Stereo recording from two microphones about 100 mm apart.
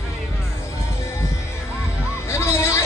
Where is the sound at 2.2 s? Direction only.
25° left (ahead or behind).